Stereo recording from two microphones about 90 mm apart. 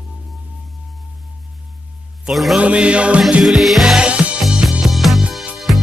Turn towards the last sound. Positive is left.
turn(degrees=0)  # may be behind; listen again after turning